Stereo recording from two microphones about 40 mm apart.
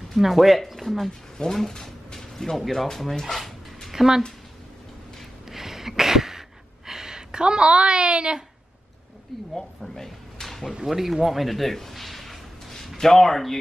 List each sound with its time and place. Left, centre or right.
0.1 s speech: centre
2.1 s dog: centre
3.9 s speech: centre
5.5 s a sound: centre
6.9 s a woman's voice: centre
9.6 s a sound: centre
10.7 s speech: centre
11.2 s a sound: centre
12.9 s speech: centre